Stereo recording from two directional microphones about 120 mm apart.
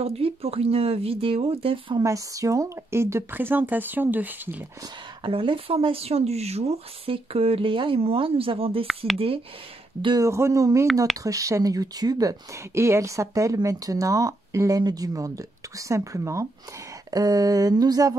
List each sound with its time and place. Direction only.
0.0 s speech: 55° right (ahead or behind)
2.0 s speech: 30° right (ahead or behind)
5.2 s speech: 45° right (ahead or behind)
8.8 s speech: centre (ahead or behind)
10.0 s speech: 30° right (ahead or behind)
17.1 s a sound: 30° right (ahead or behind)